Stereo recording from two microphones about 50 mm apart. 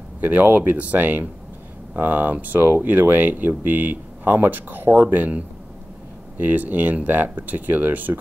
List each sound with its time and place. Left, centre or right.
0.2 s speech: right